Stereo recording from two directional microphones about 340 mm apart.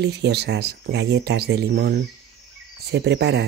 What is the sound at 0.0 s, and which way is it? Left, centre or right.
Speech, right.